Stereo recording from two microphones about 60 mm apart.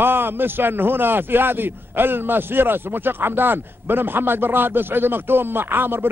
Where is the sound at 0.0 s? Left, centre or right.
Right.